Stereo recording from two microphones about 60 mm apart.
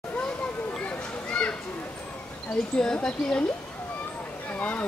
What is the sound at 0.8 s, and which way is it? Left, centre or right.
Children playing, centre.